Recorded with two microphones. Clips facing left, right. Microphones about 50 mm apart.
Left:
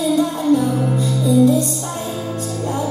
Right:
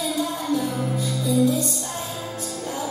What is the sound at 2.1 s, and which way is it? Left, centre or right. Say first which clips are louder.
Music: left 7 dB; left.